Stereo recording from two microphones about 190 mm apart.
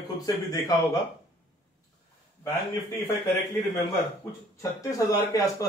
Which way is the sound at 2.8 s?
15° left (ahead or behind).